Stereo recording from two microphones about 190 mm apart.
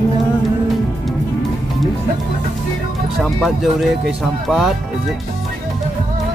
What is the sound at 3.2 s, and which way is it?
Speech, centre (ahead or behind).